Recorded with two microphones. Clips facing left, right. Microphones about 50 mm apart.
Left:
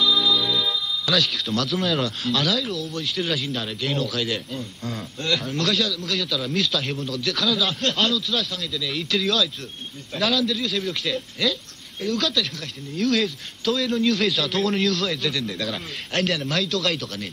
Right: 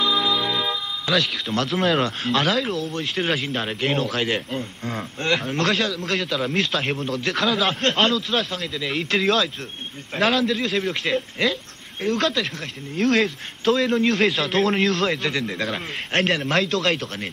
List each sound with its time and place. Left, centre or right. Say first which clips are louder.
0.0 s music: even; right
1.5 s speech: right 4 dB; right